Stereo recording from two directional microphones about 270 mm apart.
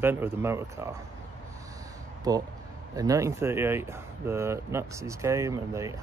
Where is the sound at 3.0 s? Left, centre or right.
Centre.